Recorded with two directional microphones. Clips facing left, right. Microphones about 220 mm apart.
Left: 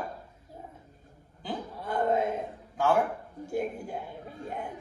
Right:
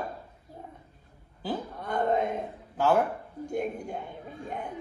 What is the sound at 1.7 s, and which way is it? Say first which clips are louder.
Speech: left 1 dB; 5° left (ahead or behind).